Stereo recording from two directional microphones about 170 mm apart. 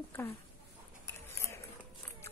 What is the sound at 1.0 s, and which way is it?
Cutlery, 15° left (ahead or behind).